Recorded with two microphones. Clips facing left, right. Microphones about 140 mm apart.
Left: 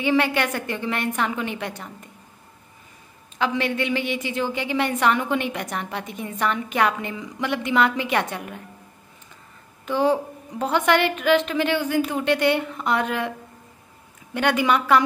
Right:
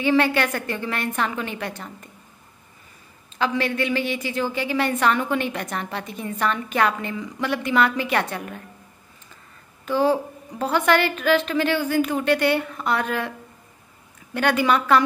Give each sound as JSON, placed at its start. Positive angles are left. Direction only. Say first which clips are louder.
{"t": 0.0, "sound": "a woman's voice", "louder": "right 1 dB", "side_deg": 15}
{"t": 3.3, "sound": "a woman's voice", "louder": "even", "side_deg": 15}
{"t": 9.8, "sound": "a woman's voice", "louder": "even", "side_deg": 15}
{"t": 14.3, "sound": "a woman's voice", "louder": "even", "side_deg": 15}